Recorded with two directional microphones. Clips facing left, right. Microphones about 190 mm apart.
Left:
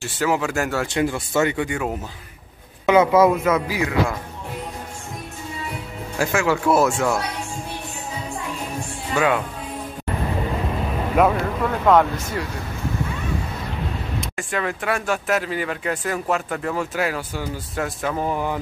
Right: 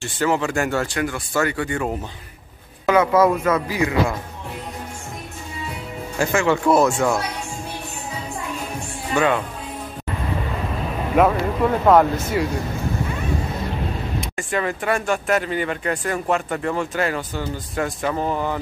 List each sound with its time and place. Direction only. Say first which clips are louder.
0.0 s speech: right 1 dB; 5° left (ahead or behind)
0.9 s speech: left 2 dB; 25° left (ahead or behind)
2.9 s speech: left 1 dB; 15° left (ahead or behind)
6.1 s speech: right 1 dB; 5° left (ahead or behind)
9.1 s speech: right 1 dB; 5° left (ahead or behind)
11.2 s speech: right 2 dB; centre (ahead or behind)
14.2 s speech: right 2 dB; centre (ahead or behind)